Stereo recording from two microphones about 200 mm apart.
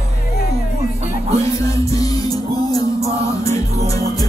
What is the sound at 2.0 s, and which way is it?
Music, 20° left (ahead or behind).